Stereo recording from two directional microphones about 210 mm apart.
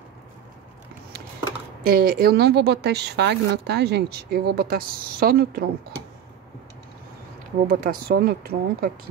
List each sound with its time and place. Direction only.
1.9 s a woman's voice: 45° right (ahead or behind)
7.6 s a woman's voice: 40° right (ahead or behind)